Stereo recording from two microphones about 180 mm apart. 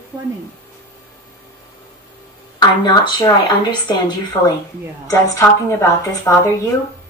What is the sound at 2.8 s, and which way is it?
A woman's voice, 25° left (ahead or behind).